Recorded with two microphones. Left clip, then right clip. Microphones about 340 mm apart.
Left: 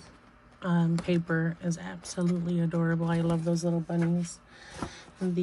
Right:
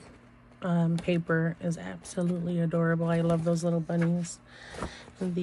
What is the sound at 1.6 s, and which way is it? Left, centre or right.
Speech, centre.